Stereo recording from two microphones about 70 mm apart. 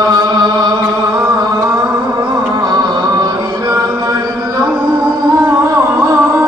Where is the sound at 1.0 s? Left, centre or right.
Right.